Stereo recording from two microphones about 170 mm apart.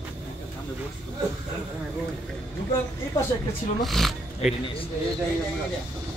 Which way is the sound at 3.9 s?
Centre (ahead or behind).